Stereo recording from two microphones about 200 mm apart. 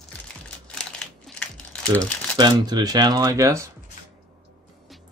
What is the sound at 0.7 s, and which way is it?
Crumpling, 5° left (ahead or behind).